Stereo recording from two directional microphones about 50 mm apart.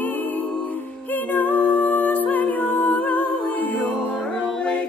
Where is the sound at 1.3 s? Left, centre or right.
Left.